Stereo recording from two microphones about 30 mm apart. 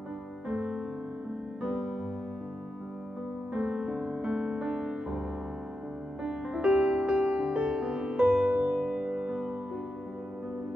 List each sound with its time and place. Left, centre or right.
0.5 s music: centre
3.5 s music: centre
4.1 s music: right
6.2 s music: right
7.2 s music: right
8.0 s music: right
8.5 s music: right
8.7 s music: right
9.3 s music: right